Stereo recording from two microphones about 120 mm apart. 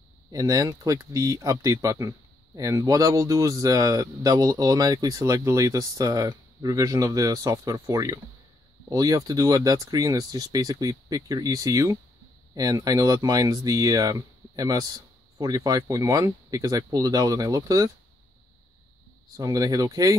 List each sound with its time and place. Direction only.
0.3 s speech: 30° right (ahead or behind)
19.3 s speech: 30° right (ahead or behind)